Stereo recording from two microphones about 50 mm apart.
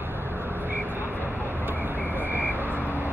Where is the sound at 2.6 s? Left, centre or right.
Right.